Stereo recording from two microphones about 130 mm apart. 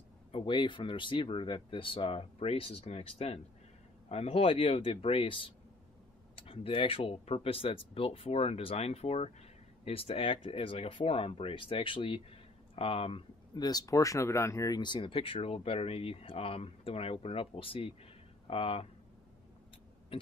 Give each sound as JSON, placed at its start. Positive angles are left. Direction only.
{"t": 0.3, "sound": "speech", "side_deg": 40}
{"t": 13.7, "sound": "speech", "side_deg": 30}
{"t": 20.1, "sound": "a sound", "side_deg": 45}